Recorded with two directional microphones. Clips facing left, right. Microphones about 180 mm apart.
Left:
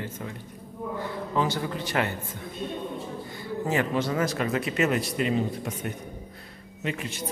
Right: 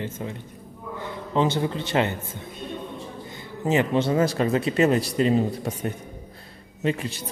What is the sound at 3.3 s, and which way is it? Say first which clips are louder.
A man's voice: right 4 dB; 20° right (ahead or behind).